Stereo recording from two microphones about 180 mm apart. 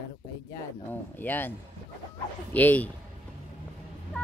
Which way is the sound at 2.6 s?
10° left (ahead or behind).